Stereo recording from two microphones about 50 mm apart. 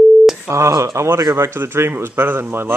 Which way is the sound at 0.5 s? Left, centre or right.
Right.